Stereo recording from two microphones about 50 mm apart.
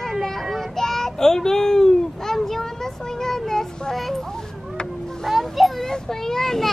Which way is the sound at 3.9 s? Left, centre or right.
Centre.